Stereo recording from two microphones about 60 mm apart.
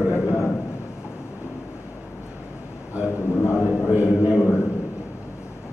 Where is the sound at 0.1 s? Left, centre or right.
Left.